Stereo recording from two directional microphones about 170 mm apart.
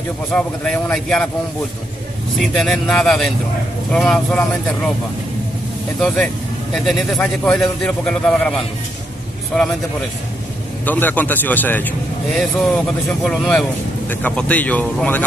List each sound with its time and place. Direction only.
0.3 s speech: 5° left (ahead or behind)
2.3 s speech: centre (ahead or behind)
5.9 s speech: 5° left (ahead or behind)
10.9 s speech: 10° left (ahead or behind)